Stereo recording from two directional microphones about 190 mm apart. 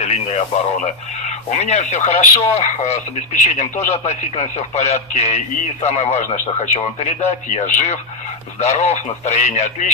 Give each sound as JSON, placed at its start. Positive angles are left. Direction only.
{"t": 0.0, "sound": "speech", "side_deg": 35}
{"t": 1.5, "sound": "speech", "side_deg": 35}